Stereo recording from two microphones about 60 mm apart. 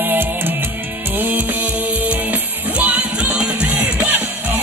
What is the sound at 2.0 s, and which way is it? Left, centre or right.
Music, right.